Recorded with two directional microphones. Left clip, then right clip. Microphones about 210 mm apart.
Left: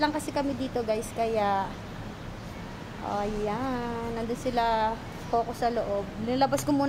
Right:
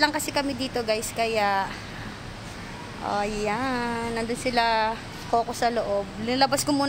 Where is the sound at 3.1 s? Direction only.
25° right (ahead or behind).